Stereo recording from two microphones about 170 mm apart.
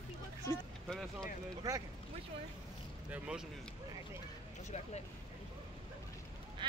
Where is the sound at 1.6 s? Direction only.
20° right (ahead or behind).